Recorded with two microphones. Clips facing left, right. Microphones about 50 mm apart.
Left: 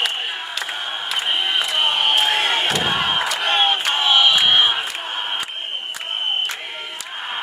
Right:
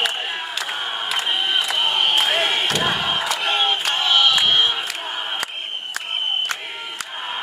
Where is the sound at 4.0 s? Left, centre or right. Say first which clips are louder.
Left 2 dB; centre.